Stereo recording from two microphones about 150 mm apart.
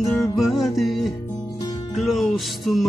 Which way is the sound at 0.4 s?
Centre (ahead or behind).